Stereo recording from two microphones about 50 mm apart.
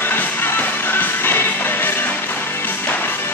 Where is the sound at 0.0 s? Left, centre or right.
Left.